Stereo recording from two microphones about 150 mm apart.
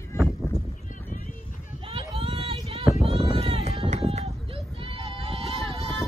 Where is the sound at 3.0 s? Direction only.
40° right (ahead or behind).